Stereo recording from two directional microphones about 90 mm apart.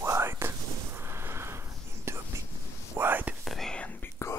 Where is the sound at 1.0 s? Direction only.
25° right (ahead or behind).